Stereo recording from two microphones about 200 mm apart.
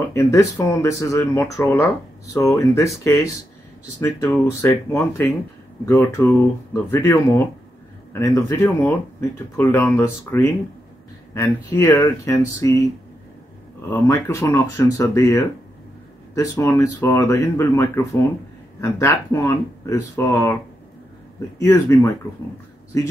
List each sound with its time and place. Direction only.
0.1 s speech: 15° left (ahead or behind)
14.0 s speech: 15° left (ahead or behind)
21.5 s speech: 15° left (ahead or behind)